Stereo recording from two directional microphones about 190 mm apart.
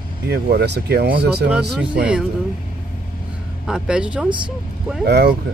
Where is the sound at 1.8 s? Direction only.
5° right (ahead or behind).